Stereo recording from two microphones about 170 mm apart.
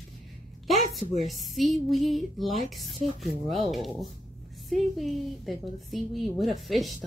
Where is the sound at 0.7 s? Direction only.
Centre (ahead or behind).